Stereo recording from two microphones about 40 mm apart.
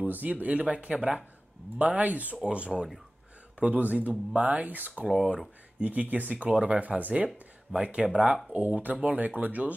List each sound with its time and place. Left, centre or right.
0.0 s speech: right
2.4 s speech: right
3.5 s speech: right
7.7 s speech: right
8.5 s speech: right